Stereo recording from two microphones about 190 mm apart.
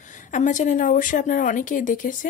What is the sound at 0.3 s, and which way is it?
A woman's voice, 40° left (ahead or behind).